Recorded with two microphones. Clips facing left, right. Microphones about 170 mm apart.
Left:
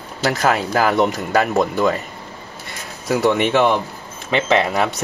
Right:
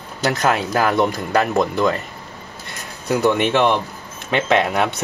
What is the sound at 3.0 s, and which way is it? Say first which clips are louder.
Speech: even; centre (ahead or behind).